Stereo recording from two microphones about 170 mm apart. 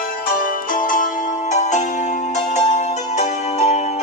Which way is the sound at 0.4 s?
55° left (ahead or behind).